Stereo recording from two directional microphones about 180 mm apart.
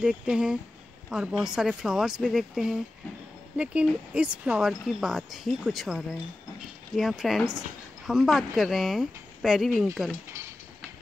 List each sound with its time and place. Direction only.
0.0 s speech: 5° right (ahead or behind)